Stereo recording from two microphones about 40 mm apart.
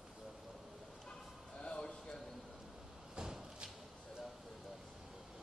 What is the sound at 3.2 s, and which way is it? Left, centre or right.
Thump, centre.